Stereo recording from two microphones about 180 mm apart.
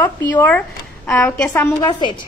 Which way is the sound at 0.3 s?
10° left (ahead or behind).